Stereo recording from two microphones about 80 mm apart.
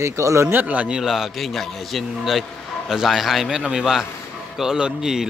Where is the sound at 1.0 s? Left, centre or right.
Centre.